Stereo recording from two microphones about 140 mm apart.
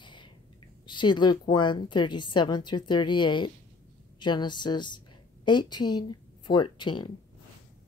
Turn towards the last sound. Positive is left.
turn(degrees=35)  # may be behind; listen again after turning